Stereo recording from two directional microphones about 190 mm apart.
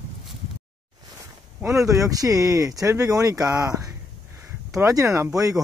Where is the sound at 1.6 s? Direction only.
15° right (ahead or behind).